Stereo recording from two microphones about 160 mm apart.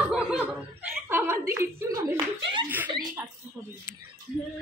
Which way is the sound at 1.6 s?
20° right (ahead or behind).